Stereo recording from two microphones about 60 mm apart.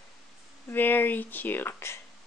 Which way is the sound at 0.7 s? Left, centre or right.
Left.